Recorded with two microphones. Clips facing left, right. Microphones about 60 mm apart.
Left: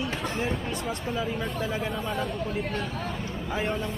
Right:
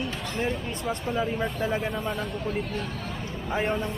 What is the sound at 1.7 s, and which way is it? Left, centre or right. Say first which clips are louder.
Speech: right 2 dB; centre.